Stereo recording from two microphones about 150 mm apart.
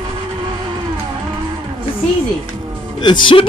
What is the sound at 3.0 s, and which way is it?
Speech, 30° left (ahead or behind).